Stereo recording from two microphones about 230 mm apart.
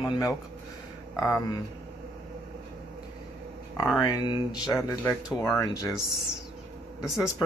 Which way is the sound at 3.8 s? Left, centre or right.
Centre.